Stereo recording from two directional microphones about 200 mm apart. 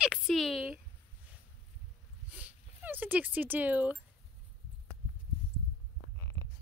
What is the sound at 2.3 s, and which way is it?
Speech, 10° right (ahead or behind).